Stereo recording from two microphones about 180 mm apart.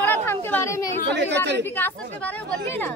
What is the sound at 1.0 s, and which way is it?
Speech, 70° right (ahead or behind).